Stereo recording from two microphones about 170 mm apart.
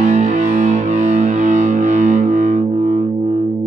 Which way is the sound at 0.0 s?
45° right (ahead or behind).